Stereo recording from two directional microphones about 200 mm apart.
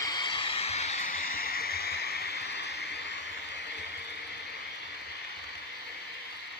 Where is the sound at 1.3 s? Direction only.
50° left (ahead or behind).